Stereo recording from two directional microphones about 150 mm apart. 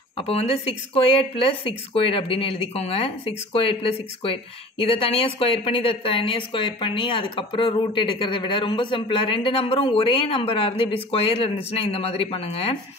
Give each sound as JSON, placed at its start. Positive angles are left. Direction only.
{"t": 0.2, "sound": "speech", "side_deg": 40}